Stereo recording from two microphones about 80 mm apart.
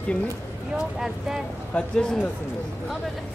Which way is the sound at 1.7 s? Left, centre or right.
Centre.